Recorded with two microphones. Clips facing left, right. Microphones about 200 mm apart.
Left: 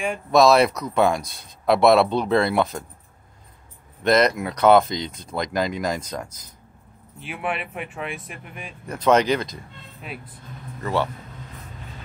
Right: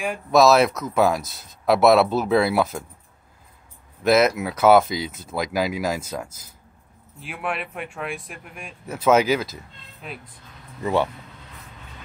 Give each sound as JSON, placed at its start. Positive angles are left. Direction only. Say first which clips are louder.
{"t": 0.0, "sound": "speech", "louder": "even", "side_deg": 0}
{"t": 4.0, "sound": "speech", "louder": "right 1 dB", "side_deg": -5}
{"t": 10.8, "sound": "speech", "louder": "right 2 dB", "side_deg": -15}